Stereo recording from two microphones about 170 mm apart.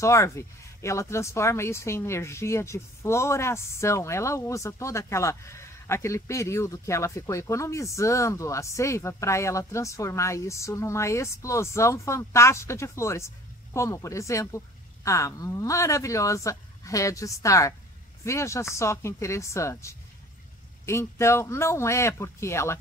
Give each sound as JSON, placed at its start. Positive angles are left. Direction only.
{"t": 0.0, "sound": "speech", "side_deg": 20}